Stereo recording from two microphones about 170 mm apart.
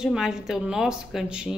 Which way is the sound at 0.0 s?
5° right (ahead or behind).